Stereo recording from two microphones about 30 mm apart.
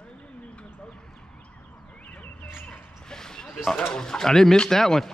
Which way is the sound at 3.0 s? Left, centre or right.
Left.